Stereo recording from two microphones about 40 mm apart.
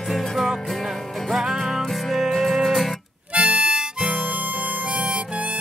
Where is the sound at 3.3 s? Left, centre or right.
Right.